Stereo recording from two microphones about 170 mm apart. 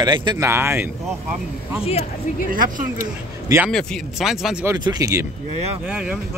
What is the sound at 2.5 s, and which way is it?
Speech, 55° right (ahead or behind).